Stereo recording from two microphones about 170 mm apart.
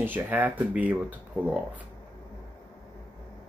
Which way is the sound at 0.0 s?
10° right (ahead or behind).